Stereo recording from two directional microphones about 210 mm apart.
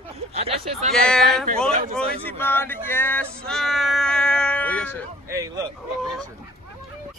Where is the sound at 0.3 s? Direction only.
30° right (ahead or behind).